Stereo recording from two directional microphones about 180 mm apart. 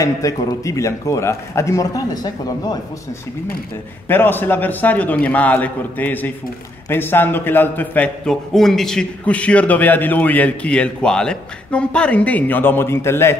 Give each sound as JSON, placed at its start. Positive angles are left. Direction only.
{"t": 0.0, "sound": "a man's voice", "side_deg": 20}
{"t": 4.1, "sound": "a man's voice", "side_deg": 10}